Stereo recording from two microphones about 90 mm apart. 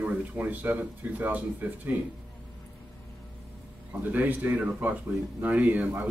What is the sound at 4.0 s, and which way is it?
A man's voice, 20° right (ahead or behind).